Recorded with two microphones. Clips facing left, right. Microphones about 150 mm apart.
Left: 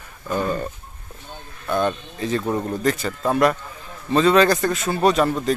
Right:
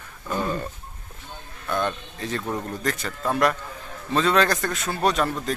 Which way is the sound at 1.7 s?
5° left (ahead or behind).